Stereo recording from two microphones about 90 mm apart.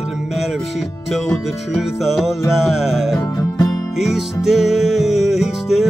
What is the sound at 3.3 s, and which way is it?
Music, 30° left (ahead or behind).